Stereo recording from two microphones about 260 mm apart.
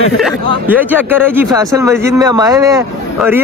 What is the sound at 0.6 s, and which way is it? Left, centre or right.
Speech, centre.